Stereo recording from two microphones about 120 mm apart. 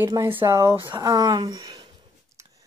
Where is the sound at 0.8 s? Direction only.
40° right (ahead or behind).